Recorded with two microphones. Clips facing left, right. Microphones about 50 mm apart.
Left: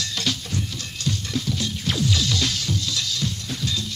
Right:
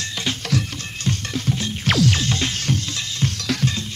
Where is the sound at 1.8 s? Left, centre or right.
Right.